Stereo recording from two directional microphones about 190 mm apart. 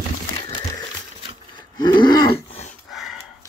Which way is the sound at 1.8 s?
20° left (ahead or behind).